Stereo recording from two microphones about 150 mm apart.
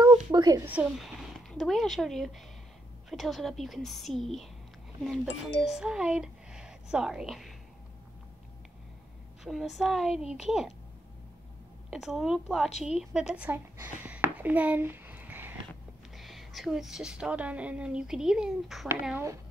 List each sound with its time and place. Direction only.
0.0 s a sound: 25° right (ahead or behind)
0.7 s a woman's voice: 10° right (ahead or behind)
9.4 s a woman's voice: centre (ahead or behind)
11.9 s a woman's voice: centre (ahead or behind)
13.3 s a sound: 10° right (ahead or behind)
16.2 s a woman's voice: centre (ahead or behind)
18.9 s speech: 15° right (ahead or behind)